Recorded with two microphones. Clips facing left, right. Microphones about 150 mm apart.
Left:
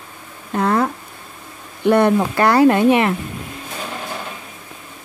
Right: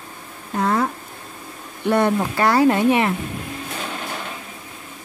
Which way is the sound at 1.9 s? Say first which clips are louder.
Left 3 dB; 65° left (ahead or behind).